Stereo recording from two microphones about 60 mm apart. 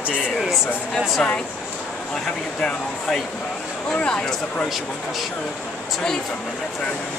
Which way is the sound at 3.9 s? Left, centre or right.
Centre.